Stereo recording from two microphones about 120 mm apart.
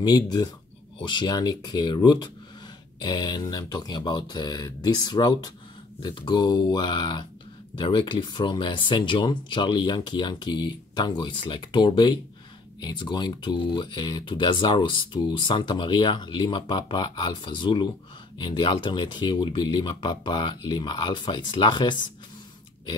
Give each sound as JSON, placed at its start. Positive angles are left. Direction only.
{"t": 0.0, "sound": "speech", "side_deg": 30}